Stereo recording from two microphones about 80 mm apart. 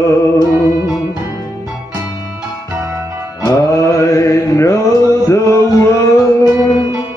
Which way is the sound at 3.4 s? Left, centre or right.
Left.